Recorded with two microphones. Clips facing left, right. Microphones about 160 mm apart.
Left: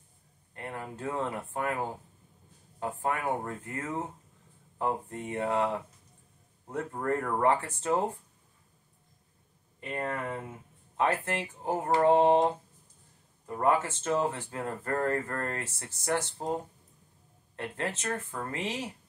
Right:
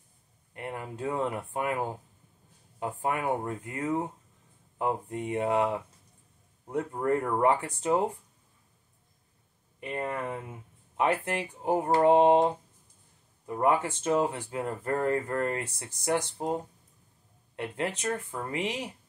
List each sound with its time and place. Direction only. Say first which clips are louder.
0.6 s speech: right 2 dB; 20° right (ahead or behind)
9.8 s speech: right 1 dB; 15° right (ahead or behind)
13.6 s speech: right 1 dB; 15° right (ahead or behind)
17.6 s speech: right 2 dB; 15° right (ahead or behind)